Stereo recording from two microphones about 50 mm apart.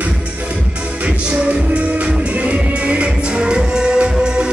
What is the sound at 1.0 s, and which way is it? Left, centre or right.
Music, right.